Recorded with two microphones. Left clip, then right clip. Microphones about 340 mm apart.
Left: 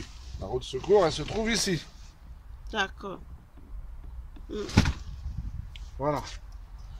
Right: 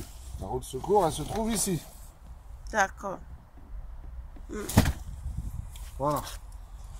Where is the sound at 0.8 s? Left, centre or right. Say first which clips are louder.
Left 2 dB; left.